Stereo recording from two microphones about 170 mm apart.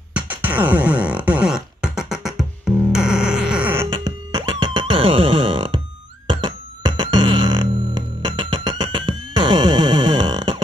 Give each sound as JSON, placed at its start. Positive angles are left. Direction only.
{"t": 0.1, "sound": "music", "side_deg": -10}